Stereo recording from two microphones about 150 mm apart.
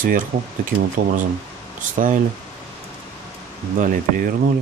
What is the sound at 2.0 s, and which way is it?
Insect, 60° right (ahead or behind).